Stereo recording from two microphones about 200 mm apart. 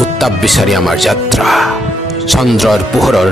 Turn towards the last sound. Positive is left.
turn(degrees=0)  # may be behind; listen again after turning